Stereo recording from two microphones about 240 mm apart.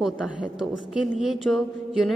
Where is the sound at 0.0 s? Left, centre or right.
Centre.